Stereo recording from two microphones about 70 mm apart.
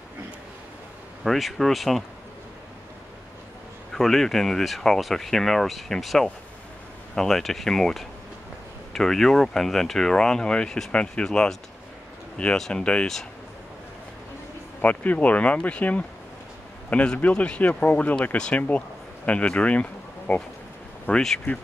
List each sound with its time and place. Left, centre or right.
1.2 s speech: centre
3.9 s speech: centre
14.8 s speech: left
21.1 s speech: centre